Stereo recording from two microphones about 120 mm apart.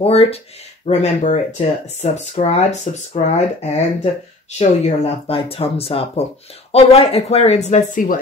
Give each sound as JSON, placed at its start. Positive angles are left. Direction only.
{"t": 0.0, "sound": "speech", "side_deg": 55}
{"t": 0.8, "sound": "speech", "side_deg": 70}